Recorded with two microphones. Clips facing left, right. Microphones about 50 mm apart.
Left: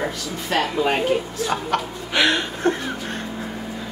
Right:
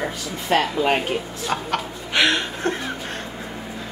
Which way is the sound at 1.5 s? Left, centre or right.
Centre.